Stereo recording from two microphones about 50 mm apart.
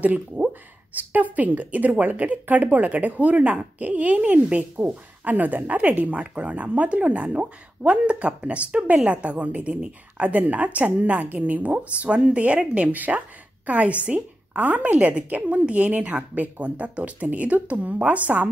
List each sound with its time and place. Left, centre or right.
0.9 s a woman's voice: right